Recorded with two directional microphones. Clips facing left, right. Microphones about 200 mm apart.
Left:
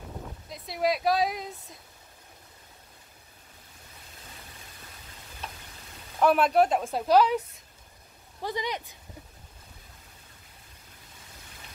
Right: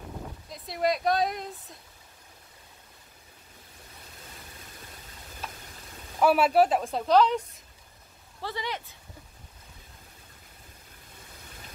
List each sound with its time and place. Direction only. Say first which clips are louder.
0.5 s speech: even; centre (ahead or behind)
6.1 s a woman's voice: even; 5° right (ahead or behind); by 8.9 s 20° left (ahead or behind)